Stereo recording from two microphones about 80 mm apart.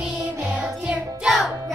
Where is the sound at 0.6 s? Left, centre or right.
Centre.